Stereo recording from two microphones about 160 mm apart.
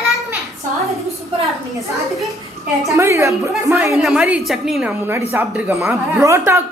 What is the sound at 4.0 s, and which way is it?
Speech, 5° right (ahead or behind).